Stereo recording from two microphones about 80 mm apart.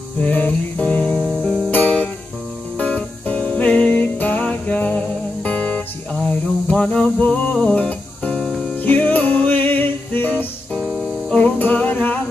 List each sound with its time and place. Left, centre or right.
0.2 s music: centre
1.1 s music: centre
1.7 s music: centre
6.2 s a sound: centre
7.6 s music: centre
8.5 s music: centre
8.8 s music: left
10.7 s music: centre
11.3 s music: left